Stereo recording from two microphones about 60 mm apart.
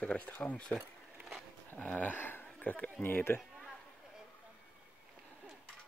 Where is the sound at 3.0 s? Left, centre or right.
Left.